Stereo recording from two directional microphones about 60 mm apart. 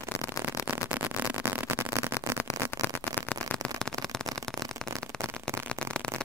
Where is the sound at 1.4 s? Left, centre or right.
Right.